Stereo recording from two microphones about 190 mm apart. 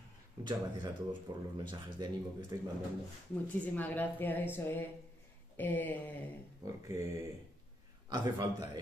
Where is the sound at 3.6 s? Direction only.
10° left (ahead or behind).